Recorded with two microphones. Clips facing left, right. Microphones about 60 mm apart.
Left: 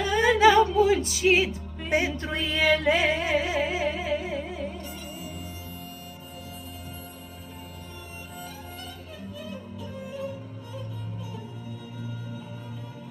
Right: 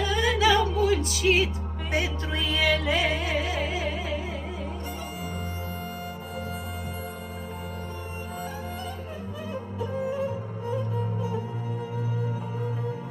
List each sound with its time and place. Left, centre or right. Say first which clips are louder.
0.0 s music: left 4 dB; left
9.8 s music: right 9 dB; right